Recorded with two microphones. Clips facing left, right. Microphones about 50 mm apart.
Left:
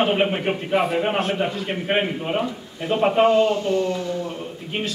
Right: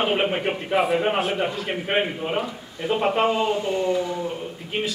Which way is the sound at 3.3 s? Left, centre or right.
Centre.